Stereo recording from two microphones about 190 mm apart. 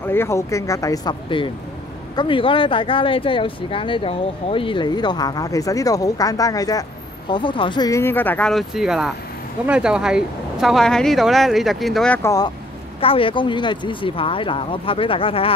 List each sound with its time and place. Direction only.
0.0 s speech: 10° left (ahead or behind)
13.0 s speech: 30° left (ahead or behind)